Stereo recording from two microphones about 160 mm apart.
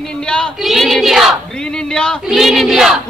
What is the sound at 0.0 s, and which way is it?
Battle cry, 5° left (ahead or behind).